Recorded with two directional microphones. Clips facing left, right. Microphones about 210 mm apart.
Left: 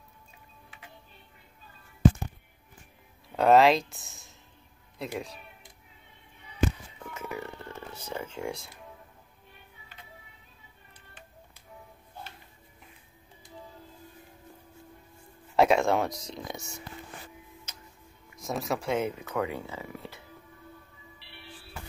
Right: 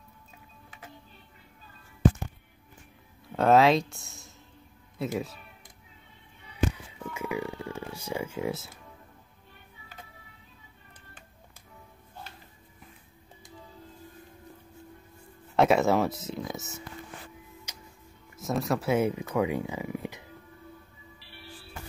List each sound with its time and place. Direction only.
0.7 s music: 45° right (ahead or behind)
3.3 s speech: centre (ahead or behind)
7.2 s speech: 10° right (ahead or behind)
15.5 s speech: centre (ahead or behind)
17.7 s music: 10° right (ahead or behind)
18.4 s speech: centre (ahead or behind); by 20.2 s 15° right (ahead or behind)
21.2 s music: 40° right (ahead or behind)